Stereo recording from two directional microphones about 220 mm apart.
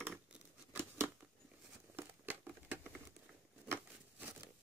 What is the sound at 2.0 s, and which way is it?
Crumpling, 10° right (ahead or behind).